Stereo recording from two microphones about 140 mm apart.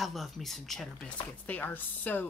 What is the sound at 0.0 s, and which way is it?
Speech, centre (ahead or behind).